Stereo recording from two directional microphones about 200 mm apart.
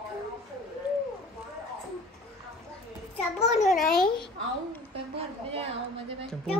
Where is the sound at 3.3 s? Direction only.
35° left (ahead or behind).